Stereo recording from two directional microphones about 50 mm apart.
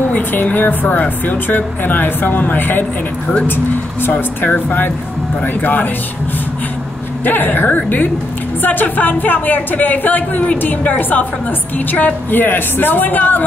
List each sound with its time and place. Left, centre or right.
0.0 s a woman's voice: left
4.1 s a woman's voice: left
7.2 s a woman's voice: left